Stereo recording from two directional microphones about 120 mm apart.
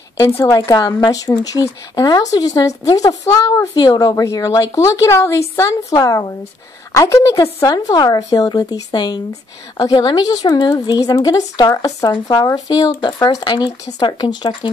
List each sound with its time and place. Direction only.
0.7 s speech: 35° left (ahead or behind)